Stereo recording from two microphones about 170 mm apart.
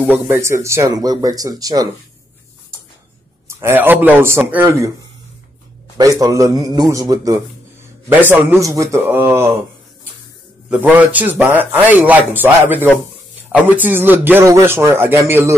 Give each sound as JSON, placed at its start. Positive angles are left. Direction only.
{"t": 0.0, "sound": "speech", "side_deg": -15}
{"t": 3.4, "sound": "a man's voice", "side_deg": -15}
{"t": 5.9, "sound": "speech", "side_deg": -20}
{"t": 8.1, "sound": "a man's voice", "side_deg": -10}
{"t": 10.7, "sound": "a man's voice", "side_deg": -10}